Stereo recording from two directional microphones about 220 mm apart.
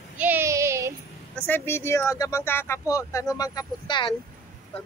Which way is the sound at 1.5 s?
10° left (ahead or behind).